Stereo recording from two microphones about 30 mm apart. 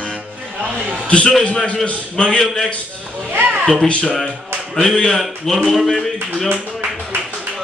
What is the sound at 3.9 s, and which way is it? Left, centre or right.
Speech, left.